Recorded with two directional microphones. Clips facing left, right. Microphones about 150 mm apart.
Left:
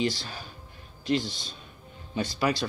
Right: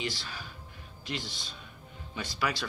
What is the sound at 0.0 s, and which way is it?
Speech, 35° left (ahead or behind).